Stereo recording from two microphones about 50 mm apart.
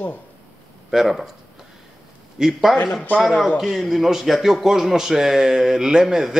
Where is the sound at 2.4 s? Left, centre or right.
Centre.